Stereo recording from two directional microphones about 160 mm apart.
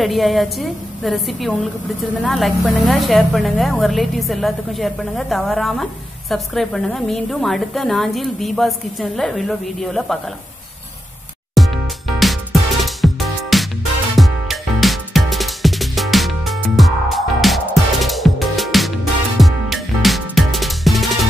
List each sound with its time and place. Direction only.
0.0 s a woman's voice: centre (ahead or behind)
11.5 s music: centre (ahead or behind)